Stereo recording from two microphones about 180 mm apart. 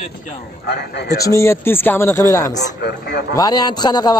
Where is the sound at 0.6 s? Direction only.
65° left (ahead or behind).